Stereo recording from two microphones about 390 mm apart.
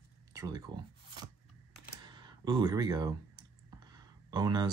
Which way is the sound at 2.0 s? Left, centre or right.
Centre.